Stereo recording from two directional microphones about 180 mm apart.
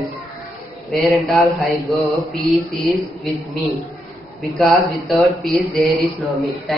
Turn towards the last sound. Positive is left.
turn(degrees=0)  # may be behind; listen again after turning